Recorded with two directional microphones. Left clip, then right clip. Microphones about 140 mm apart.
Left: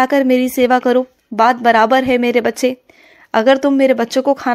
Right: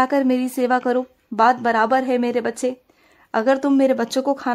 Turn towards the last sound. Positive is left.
turn(degrees=20)  # may be behind; listen again after turning